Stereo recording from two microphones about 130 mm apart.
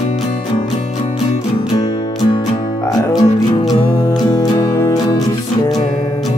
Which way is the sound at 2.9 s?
30° left (ahead or behind).